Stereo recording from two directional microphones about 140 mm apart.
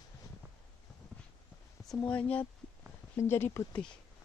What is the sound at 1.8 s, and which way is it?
Speech, 10° left (ahead or behind).